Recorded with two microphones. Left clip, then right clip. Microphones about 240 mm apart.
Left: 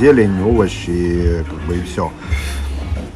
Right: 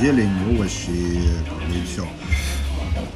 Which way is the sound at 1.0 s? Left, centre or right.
Left.